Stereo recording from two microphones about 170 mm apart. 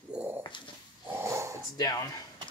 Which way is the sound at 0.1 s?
5° right (ahead or behind).